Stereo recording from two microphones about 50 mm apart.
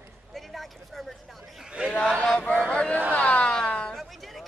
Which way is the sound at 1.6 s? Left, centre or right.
Centre.